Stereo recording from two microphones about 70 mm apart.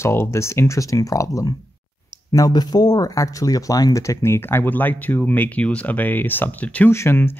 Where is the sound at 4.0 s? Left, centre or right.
Left.